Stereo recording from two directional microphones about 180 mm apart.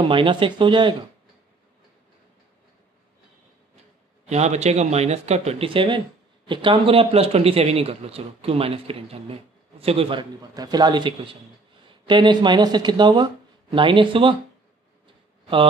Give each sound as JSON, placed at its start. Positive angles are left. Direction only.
{"t": 0.0, "sound": "speech", "side_deg": -30}
{"t": 4.3, "sound": "speech", "side_deg": -40}